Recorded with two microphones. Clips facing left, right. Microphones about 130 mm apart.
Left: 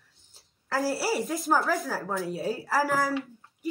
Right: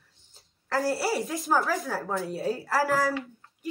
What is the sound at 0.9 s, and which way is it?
A woman's voice, centre (ahead or behind).